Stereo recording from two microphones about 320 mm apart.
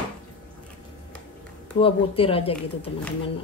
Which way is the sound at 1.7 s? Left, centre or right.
Centre.